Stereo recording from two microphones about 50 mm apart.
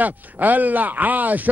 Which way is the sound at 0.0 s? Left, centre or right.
Right.